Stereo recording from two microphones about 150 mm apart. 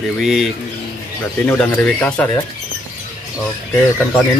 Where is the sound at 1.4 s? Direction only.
15° left (ahead or behind).